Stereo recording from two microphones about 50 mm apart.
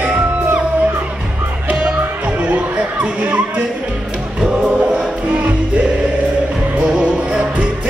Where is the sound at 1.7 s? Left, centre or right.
Right.